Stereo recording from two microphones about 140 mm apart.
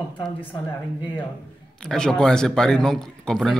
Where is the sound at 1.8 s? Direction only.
5° left (ahead or behind).